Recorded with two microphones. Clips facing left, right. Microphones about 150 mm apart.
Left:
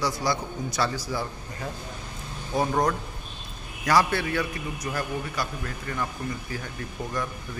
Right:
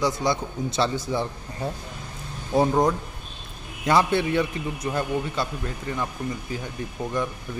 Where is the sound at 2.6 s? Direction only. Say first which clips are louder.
Right 4 dB; 20° right (ahead or behind).